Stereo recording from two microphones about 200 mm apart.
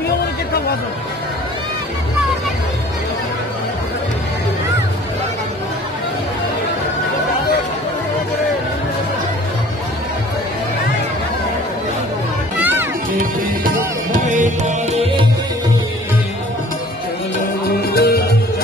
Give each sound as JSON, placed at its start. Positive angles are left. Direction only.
{"t": 14.3, "sound": "music", "side_deg": -35}
{"t": 17.8, "sound": "music", "side_deg": 55}